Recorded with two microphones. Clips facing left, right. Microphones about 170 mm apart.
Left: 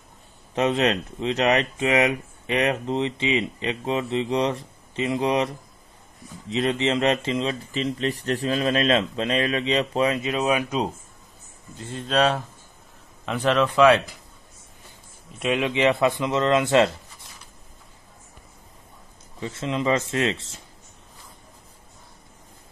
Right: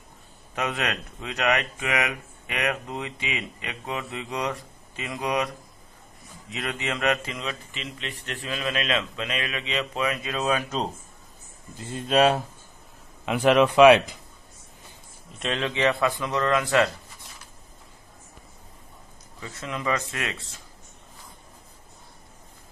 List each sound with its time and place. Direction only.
0.6 s speech: 25° left (ahead or behind)
6.5 s speech: 25° left (ahead or behind)
7.8 s speech: 40° left (ahead or behind); by 10.9 s 10° left (ahead or behind)
11.9 s speech: 10° right (ahead or behind)
15.3 s speech: 10° left (ahead or behind); by 16.9 s 25° left (ahead or behind)
19.4 s speech: 25° left (ahead or behind)